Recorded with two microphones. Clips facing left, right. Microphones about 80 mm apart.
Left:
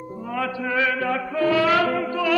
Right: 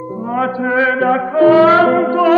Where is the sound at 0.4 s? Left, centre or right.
Right.